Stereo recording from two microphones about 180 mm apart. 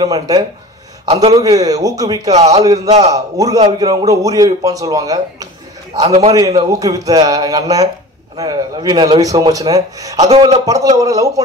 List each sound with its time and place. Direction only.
0.0 s a man's voice: 20° right (ahead or behind)
1.0 s a man's voice: 35° right (ahead or behind)
1.3 s a man's voice: 20° right (ahead or behind)
10.3 s a man's voice: 35° right (ahead or behind)
10.6 s a man's voice: 20° right (ahead or behind)